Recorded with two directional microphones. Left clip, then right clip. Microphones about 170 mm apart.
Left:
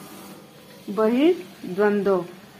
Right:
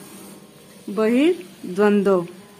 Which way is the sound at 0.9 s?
45° right (ahead or behind).